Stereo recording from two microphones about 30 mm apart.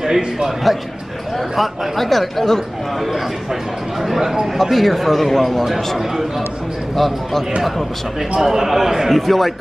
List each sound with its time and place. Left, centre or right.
0.0 s a man's voice: centre
1.6 s speech: centre
4.0 s a man's voice: centre
4.6 s a man's voice: centre
8.4 s a man's voice: centre
9.1 s speech: centre